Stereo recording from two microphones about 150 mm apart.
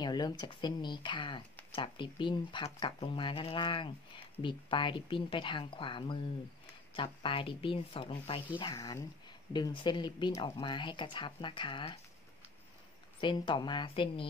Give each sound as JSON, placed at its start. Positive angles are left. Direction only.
{"t": 0.0, "sound": "speech", "side_deg": 30}
{"t": 8.7, "sound": "speech", "side_deg": 20}
{"t": 13.2, "sound": "speech", "side_deg": 30}